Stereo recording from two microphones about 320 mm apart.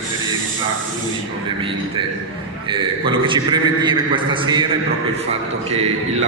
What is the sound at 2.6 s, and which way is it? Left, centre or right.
A man's voice, centre.